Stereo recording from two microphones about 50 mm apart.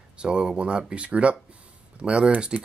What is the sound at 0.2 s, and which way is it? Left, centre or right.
Speech, centre.